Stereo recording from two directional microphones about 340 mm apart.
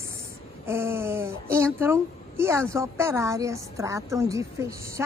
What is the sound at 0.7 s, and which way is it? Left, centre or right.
A woman's voice, centre.